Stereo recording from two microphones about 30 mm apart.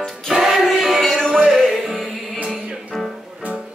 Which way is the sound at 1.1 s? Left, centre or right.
Left.